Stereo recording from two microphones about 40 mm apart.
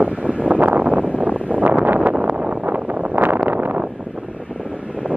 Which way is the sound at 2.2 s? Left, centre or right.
Right.